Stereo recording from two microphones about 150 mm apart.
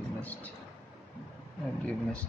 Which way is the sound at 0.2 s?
10° left (ahead or behind).